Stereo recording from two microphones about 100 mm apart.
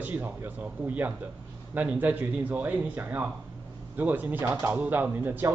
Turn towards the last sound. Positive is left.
turn(degrees=-20)  # may be behind; listen again after turning